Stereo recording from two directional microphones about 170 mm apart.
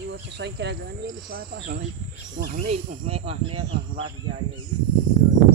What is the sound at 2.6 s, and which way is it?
Speech, 35° right (ahead or behind).